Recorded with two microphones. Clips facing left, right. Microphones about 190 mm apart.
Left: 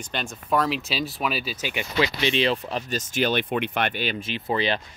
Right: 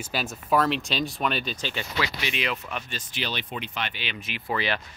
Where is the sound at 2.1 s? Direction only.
30° left (ahead or behind); by 4.2 s 45° left (ahead or behind).